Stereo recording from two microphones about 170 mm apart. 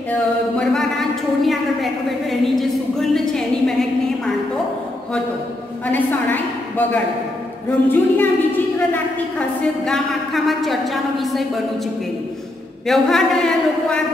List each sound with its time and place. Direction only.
0.1 s a woman's voice: 5° left (ahead or behind)
2.4 s a sound: centre (ahead or behind)
5.9 s a woman's voice: 10° left (ahead or behind)
12.8 s a woman's voice: centre (ahead or behind)